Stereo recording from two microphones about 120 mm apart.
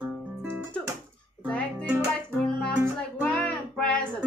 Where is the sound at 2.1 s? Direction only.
5° left (ahead or behind).